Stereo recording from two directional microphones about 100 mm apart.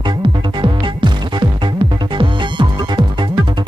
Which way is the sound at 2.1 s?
55° right (ahead or behind).